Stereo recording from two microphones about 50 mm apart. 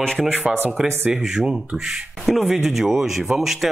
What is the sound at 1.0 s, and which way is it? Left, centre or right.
Speech, centre.